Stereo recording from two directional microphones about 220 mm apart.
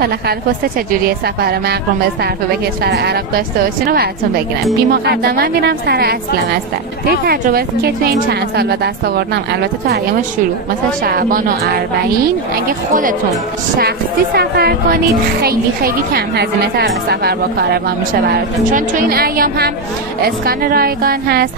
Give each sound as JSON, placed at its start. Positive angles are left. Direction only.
{"t": 0.0, "sound": "a woman's voice", "side_deg": -45}
{"t": 11.1, "sound": "a woman's voice", "side_deg": -40}
{"t": 13.7, "sound": "a woman's voice", "side_deg": -45}